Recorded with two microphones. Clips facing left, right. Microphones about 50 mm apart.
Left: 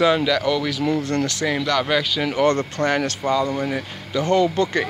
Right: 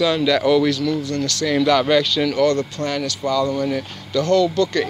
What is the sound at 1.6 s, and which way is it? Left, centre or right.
Speech, centre.